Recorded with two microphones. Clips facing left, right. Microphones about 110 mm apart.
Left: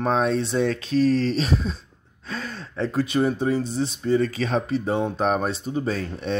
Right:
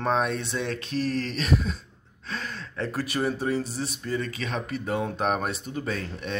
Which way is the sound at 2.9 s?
25° left (ahead or behind).